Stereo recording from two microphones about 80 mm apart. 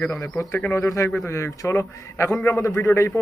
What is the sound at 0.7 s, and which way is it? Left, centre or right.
A man's voice, left.